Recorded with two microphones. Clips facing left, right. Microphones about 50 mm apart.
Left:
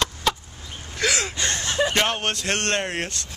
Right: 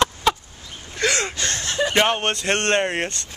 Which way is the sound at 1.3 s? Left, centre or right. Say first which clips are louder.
Even; centre.